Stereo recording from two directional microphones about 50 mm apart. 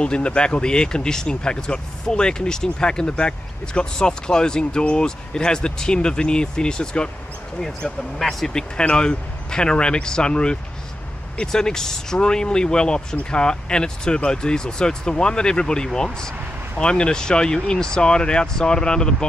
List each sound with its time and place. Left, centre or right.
0.0 s speech: left
7.6 s speech: centre
8.5 s speech: centre